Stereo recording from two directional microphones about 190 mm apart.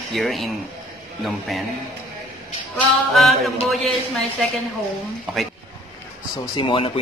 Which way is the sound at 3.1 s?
Centre (ahead or behind).